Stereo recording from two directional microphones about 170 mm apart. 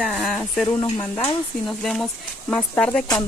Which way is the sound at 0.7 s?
20° left (ahead or behind).